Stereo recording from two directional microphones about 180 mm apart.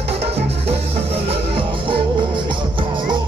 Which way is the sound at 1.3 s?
30° right (ahead or behind).